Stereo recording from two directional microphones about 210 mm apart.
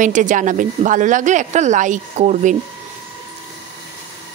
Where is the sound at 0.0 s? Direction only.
35° right (ahead or behind).